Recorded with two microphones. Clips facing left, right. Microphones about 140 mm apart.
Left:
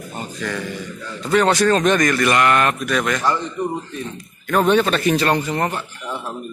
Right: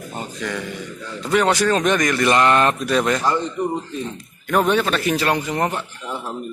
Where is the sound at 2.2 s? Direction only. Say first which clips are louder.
Right 4 dB; 25° right (ahead or behind).